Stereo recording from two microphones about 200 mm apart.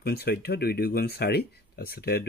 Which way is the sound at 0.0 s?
50° left (ahead or behind).